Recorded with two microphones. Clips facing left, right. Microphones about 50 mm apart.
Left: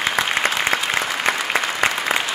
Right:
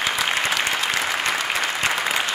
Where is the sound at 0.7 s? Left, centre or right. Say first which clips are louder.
Left 3 dB; left.